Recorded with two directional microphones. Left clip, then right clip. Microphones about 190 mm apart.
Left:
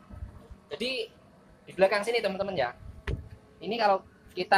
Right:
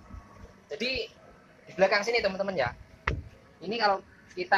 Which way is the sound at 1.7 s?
5° right (ahead or behind).